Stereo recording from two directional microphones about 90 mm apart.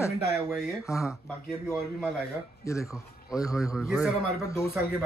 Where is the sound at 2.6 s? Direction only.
35° left (ahead or behind).